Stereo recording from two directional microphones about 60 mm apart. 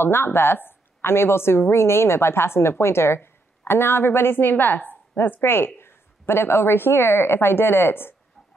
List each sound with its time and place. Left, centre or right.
0.0 s a woman's voice: left